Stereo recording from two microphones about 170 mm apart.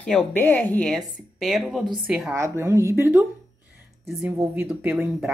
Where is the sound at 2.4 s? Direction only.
15° right (ahead or behind).